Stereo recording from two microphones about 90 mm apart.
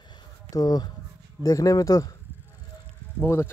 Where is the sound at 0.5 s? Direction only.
45° left (ahead or behind).